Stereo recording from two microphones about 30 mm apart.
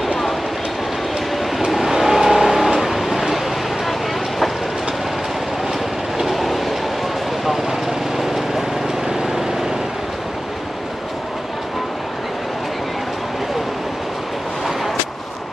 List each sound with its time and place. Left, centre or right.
1.7 s vehicle: centre
6.2 s train: centre
8.2 s a sound: centre
9.1 s vehicle: centre